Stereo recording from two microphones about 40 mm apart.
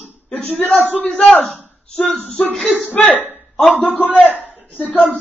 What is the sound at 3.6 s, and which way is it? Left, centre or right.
A man's voice, left.